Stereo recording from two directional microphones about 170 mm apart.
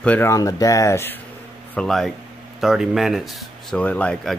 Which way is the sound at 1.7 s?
Centre (ahead or behind).